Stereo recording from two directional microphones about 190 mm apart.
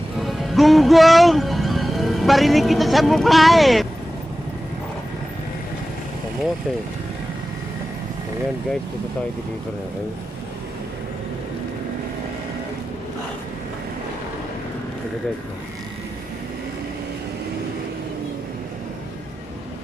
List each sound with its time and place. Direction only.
0.2 s speech: centre (ahead or behind)